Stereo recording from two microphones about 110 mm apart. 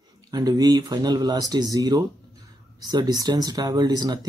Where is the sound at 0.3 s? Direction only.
35° right (ahead or behind).